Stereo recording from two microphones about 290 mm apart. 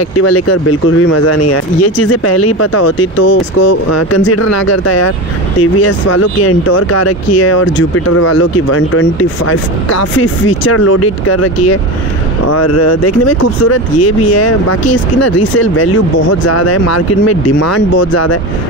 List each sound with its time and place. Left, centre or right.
0.2 s speech: left
4.2 s speech: left
15.5 s speech: left
16.3 s speech: left